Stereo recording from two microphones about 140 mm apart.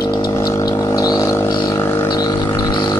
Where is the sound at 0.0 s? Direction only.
30° left (ahead or behind).